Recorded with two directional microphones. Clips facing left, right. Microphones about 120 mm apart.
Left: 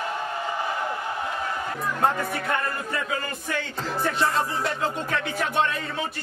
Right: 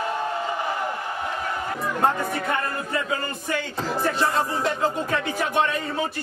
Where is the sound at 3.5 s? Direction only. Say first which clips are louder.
Right 3 dB; 5° right (ahead or behind).